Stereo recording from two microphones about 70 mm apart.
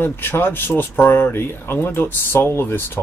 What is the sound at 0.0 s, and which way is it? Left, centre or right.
Speech, left.